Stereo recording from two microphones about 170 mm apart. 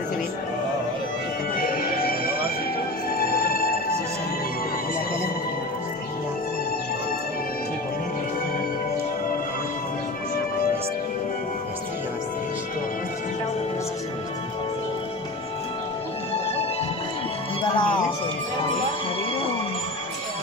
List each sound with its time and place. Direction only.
1.6 s music: 60° left (ahead or behind)
17.6 s music: 30° left (ahead or behind)